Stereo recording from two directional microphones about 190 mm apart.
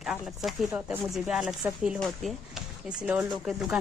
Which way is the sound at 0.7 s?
10° right (ahead or behind).